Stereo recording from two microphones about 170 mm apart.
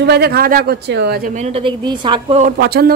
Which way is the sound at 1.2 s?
45° right (ahead or behind).